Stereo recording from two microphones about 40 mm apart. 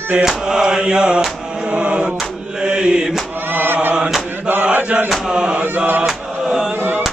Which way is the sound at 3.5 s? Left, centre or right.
Right.